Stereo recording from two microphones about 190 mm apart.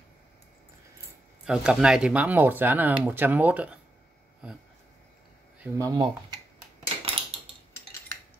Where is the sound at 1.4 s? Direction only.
5° right (ahead or behind).